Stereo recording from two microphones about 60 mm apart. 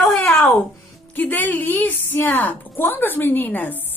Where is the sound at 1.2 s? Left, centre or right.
Left.